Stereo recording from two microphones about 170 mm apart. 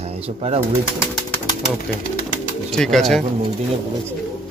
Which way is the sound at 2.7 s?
5° left (ahead or behind).